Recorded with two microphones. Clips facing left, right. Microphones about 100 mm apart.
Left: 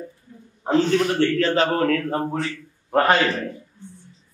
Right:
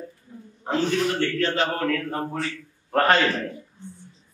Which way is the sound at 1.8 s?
20° left (ahead or behind).